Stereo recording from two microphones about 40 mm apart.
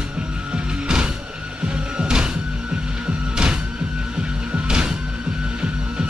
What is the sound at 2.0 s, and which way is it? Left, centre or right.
Music, right.